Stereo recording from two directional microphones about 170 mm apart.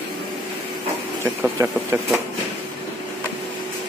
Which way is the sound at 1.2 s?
15° right (ahead or behind).